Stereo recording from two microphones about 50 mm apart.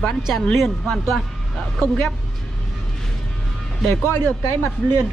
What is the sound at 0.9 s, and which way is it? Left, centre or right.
Speech, centre.